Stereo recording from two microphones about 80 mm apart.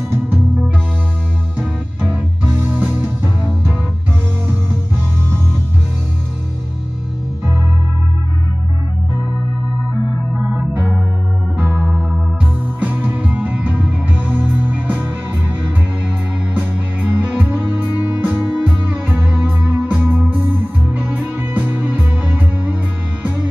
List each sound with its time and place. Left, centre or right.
1.6 s music: centre
10.7 s organ: centre
11.7 s music: centre
12.8 s music: right
16.5 s music: right